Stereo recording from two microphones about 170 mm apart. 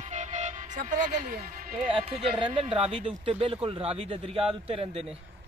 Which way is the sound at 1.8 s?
35° right (ahead or behind).